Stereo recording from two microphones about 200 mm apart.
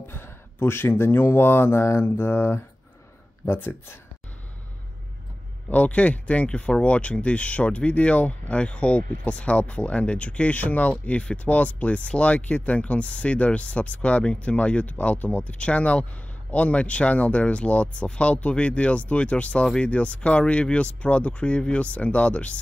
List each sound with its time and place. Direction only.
0.0 s speech: 10° left (ahead or behind)
5.7 s speech: 5° left (ahead or behind)